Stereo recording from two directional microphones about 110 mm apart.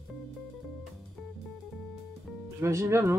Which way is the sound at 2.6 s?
25° right (ahead or behind).